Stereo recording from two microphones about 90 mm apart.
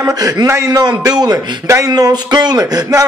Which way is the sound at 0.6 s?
45° right (ahead or behind).